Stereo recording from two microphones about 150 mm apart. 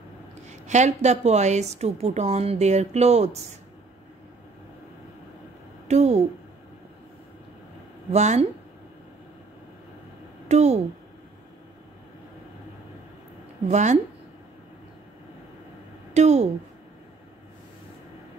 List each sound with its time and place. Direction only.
0.5 s a woman's voice: 50° right (ahead or behind)
5.9 s a sound: 50° right (ahead or behind)
8.1 s a woman's voice: 50° right (ahead or behind)
10.5 s a woman's voice: 50° right (ahead or behind)
13.7 s a woman's voice: 50° right (ahead or behind)
16.1 s a woman's voice: 50° right (ahead or behind)